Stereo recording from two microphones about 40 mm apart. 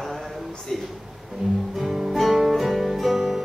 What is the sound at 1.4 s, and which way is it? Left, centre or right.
Music, right.